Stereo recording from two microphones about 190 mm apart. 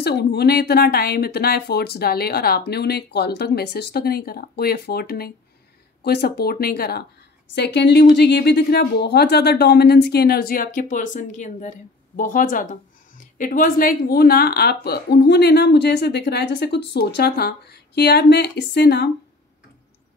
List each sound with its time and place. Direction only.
0.0 s a woman's voice: 60° left (ahead or behind)